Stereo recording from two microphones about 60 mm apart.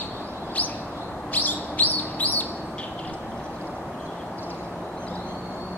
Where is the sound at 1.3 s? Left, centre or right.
Left.